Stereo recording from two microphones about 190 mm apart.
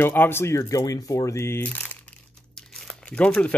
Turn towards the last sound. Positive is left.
turn(degrees=5)  # may be behind; listen again after turning